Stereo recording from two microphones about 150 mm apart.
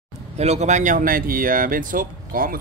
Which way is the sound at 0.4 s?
50° right (ahead or behind).